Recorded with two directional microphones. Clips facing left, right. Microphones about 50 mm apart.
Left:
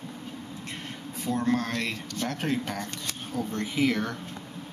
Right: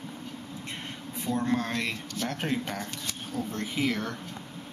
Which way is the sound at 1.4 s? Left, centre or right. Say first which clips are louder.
Left 2 dB; centre.